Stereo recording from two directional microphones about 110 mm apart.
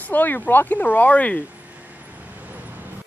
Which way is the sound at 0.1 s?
15° left (ahead or behind).